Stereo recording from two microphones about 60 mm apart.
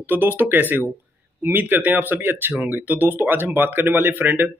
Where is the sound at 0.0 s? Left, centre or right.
Right.